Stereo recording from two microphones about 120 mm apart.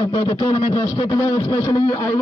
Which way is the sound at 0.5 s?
35° left (ahead or behind).